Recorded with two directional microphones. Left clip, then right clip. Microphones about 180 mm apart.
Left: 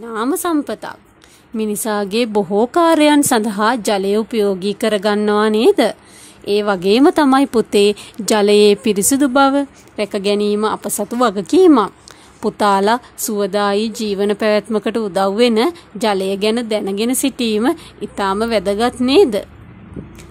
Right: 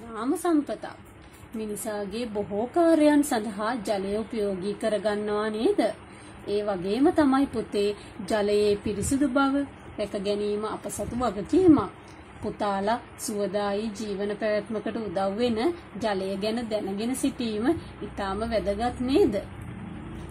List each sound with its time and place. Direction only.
0.1 s a woman's voice: 40° left (ahead or behind)